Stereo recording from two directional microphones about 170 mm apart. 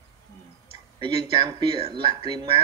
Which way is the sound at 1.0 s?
25° right (ahead or behind).